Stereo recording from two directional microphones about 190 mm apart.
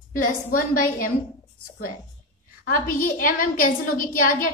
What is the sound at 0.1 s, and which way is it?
A woman's voice, 50° left (ahead or behind).